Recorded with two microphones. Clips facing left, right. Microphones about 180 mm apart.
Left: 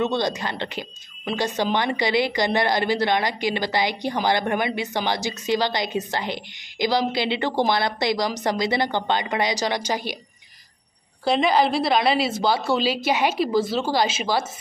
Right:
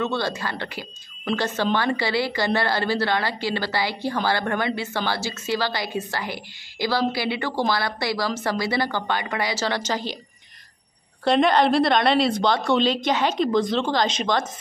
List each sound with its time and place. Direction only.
0.0 s a woman's voice: 20° left (ahead or behind)
11.2 s speech: centre (ahead or behind)